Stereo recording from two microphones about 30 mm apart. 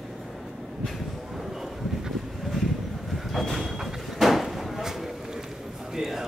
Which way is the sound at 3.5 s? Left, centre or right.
Centre.